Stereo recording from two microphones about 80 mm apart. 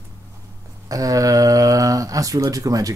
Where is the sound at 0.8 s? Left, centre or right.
Right.